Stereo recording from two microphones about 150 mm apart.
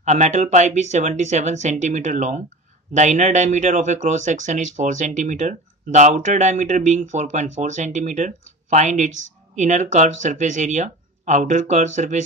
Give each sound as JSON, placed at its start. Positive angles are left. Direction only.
{"t": 0.0, "sound": "speech", "side_deg": -50}